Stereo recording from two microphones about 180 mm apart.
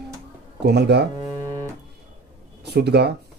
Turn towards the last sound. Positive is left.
turn(degrees=-65)  # may be behind; listen again after turning